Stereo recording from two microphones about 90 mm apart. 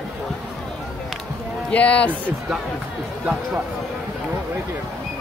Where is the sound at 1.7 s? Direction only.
15° left (ahead or behind).